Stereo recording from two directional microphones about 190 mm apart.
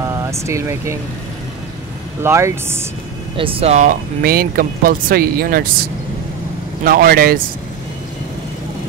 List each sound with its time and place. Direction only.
0.0 s speech: 15° right (ahead or behind)
2.2 s speech: 15° right (ahead or behind)
3.3 s speech: 30° right (ahead or behind); by 5.7 s 50° right (ahead or behind)
6.8 s speech: 50° right (ahead or behind)